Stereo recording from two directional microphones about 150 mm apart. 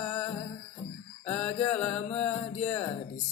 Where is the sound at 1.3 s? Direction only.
10° left (ahead or behind).